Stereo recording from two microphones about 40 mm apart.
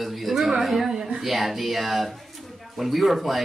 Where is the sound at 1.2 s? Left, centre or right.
Centre.